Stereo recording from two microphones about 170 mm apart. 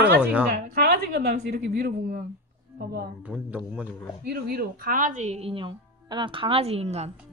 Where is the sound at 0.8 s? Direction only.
75° right (ahead or behind).